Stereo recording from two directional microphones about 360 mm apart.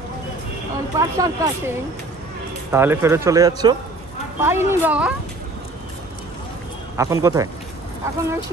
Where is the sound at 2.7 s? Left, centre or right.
Centre.